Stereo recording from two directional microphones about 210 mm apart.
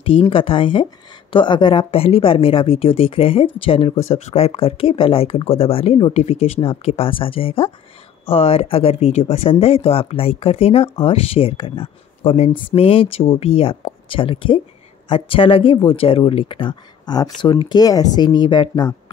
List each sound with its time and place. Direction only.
0.0 s a woman's voice: 25° left (ahead or behind)